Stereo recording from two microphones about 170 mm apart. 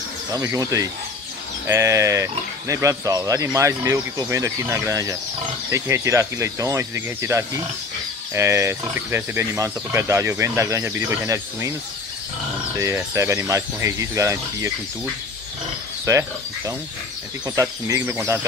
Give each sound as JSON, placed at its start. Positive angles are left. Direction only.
{"t": 0.3, "sound": "speech", "side_deg": -20}
{"t": 12.7, "sound": "speech", "side_deg": -20}
{"t": 16.1, "sound": "speech", "side_deg": -20}